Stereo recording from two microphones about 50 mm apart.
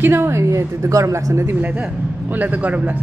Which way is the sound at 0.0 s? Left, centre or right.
Right.